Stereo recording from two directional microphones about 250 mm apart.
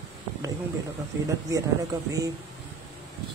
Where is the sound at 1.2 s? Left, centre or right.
Centre.